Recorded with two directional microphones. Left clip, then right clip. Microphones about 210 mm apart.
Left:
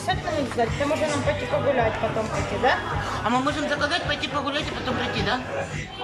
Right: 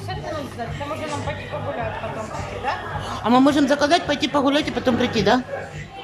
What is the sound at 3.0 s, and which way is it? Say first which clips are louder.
A man's voice: right 6 dB; 15° right (ahead or behind).